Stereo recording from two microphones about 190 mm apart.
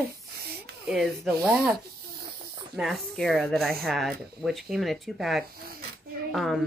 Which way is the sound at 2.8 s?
Centre (ahead or behind).